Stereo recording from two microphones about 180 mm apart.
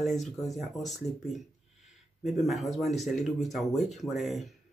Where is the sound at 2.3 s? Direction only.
Centre (ahead or behind).